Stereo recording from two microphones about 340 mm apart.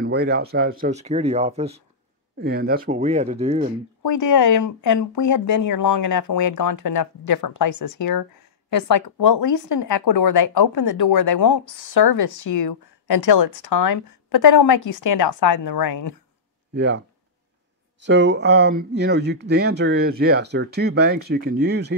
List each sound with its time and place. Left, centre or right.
0.0 s speech: right
4.0 s speech: left
9.0 s speech: left
16.7 s speech: right
18.0 s speech: right